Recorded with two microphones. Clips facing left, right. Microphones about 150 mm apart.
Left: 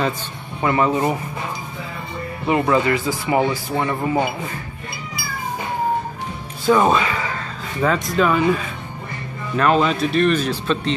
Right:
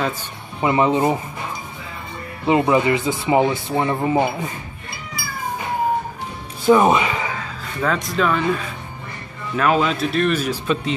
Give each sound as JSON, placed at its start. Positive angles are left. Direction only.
{"t": 0.6, "sound": "speech", "side_deg": -20}
{"t": 2.4, "sound": "speech", "side_deg": -20}
{"t": 6.6, "sound": "speech", "side_deg": -15}
{"t": 7.8, "sound": "speech", "side_deg": 0}
{"t": 9.6, "sound": "speech", "side_deg": -5}